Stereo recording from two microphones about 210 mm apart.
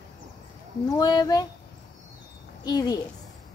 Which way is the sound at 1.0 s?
20° left (ahead or behind).